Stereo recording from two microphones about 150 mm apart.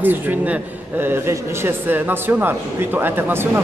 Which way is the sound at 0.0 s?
10° right (ahead or behind).